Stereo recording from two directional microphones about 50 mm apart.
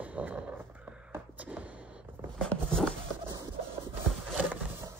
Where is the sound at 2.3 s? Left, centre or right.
Centre.